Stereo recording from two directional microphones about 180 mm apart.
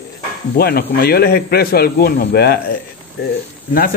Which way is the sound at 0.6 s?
60° left (ahead or behind).